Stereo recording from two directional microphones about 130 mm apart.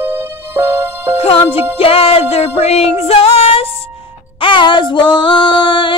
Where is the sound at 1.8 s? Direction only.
45° left (ahead or behind).